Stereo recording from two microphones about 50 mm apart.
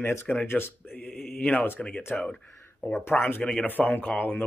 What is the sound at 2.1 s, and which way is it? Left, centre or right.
Speech, centre.